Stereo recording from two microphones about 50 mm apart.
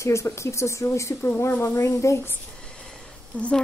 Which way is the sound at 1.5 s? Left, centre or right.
Left.